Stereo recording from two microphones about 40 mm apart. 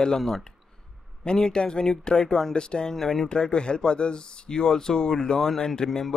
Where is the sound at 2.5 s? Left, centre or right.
Left.